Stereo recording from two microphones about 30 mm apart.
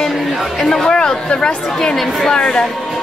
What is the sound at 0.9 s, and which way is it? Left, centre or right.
Speech, left.